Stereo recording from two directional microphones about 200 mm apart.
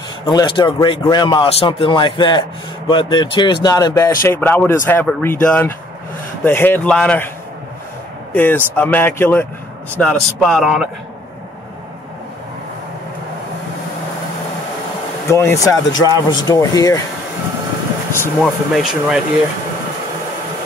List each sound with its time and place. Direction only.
0.3 s a man's voice: 20° left (ahead or behind); by 7.2 s 5° left (ahead or behind)
8.3 s speech: 10° left (ahead or behind)
15.2 s a man's voice: 15° left (ahead or behind)
18.2 s speech: centre (ahead or behind)